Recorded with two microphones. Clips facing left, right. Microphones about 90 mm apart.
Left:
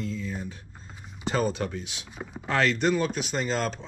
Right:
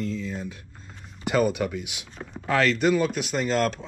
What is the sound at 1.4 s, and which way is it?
Speech, 10° right (ahead or behind).